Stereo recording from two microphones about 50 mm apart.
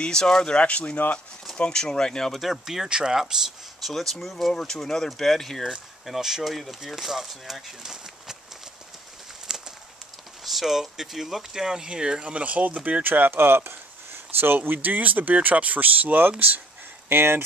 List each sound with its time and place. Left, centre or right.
0.0 s speech: centre
0.6 s speech: left
2.4 s speech: centre
3.9 s speech: centre
6.0 s speech: centre
9.5 s a sound: centre
10.4 s speech: centre
11.6 s speech: centre
12.4 s speech: right
13.0 s speech: right
17.1 s speech: right